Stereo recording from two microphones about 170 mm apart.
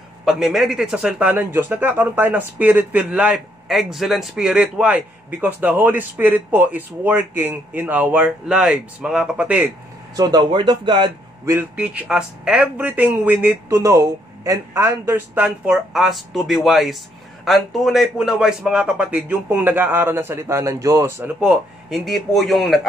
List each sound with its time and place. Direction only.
0.2 s a man's voice: centre (ahead or behind)
10.1 s speech: 25° right (ahead or behind)
11.4 s a man's voice: 15° right (ahead or behind)
11.8 s a man's voice: 5° right (ahead or behind)
21.2 s speech: 5° right (ahead or behind)